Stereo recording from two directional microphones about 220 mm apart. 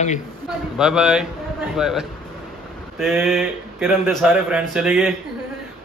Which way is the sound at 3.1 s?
Centre (ahead or behind).